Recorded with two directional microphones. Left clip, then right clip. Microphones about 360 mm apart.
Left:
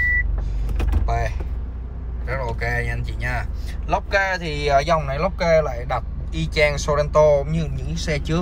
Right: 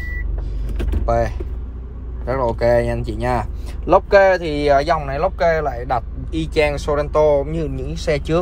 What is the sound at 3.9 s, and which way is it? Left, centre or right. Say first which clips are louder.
Speech: right 9 dB; centre.